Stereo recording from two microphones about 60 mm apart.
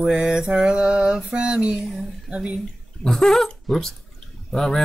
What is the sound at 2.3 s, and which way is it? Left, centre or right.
Mantra, centre.